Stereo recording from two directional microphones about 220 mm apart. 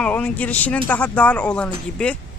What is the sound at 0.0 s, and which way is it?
Speech, 5° left (ahead or behind).